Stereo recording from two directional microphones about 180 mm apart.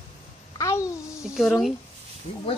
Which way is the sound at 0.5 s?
15° left (ahead or behind).